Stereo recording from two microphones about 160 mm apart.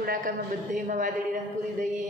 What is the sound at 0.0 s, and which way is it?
A woman's voice, 60° right (ahead or behind).